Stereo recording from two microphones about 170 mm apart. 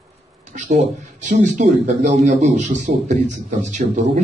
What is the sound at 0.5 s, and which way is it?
Speech, 45° right (ahead or behind).